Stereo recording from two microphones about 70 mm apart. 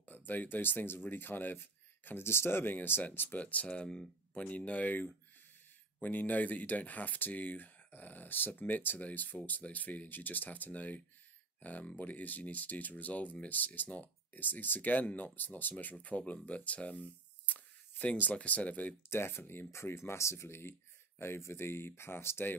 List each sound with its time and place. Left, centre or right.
0.0 s speech: left
19.0 s speech: left